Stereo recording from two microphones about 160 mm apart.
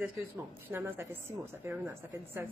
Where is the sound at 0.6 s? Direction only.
15° right (ahead or behind).